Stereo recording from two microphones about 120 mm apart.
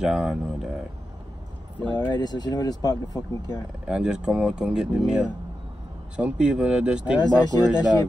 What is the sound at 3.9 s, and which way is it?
A man's voice, 5° right (ahead or behind).